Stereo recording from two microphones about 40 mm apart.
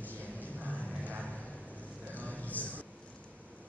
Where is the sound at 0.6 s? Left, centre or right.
Right.